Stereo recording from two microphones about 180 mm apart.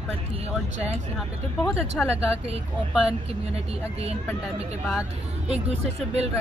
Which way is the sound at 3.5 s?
35° right (ahead or behind).